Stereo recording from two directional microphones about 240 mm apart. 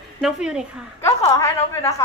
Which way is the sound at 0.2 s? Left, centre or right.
Centre.